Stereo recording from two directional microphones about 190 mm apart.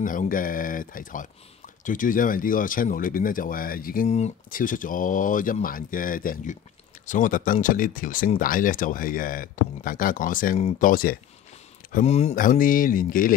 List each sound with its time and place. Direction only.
0.0 s speech: 45° left (ahead or behind)
12.0 s speech: 35° left (ahead or behind)
12.4 s speech: 45° left (ahead or behind)